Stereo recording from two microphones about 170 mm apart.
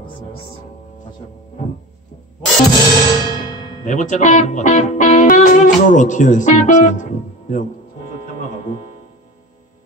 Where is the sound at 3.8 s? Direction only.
45° left (ahead or behind).